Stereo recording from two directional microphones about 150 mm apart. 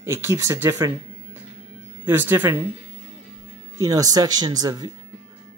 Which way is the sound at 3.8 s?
25° right (ahead or behind).